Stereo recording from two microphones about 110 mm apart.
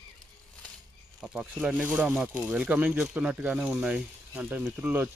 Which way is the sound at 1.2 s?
5° right (ahead or behind).